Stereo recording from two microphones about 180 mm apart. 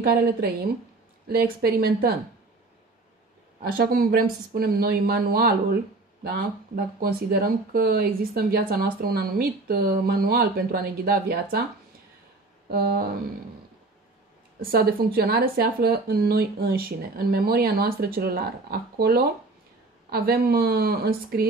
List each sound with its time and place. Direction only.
0.0 s speech: 60° right (ahead or behind)
3.7 s speech: 55° right (ahead or behind)
12.6 s speech: 60° right (ahead or behind)
14.6 s speech: 55° right (ahead or behind)